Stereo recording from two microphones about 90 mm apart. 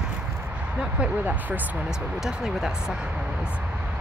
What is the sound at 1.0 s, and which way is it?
Speech, 20° right (ahead or behind).